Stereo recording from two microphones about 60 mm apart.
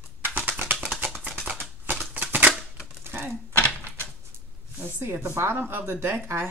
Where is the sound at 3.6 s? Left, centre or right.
Left.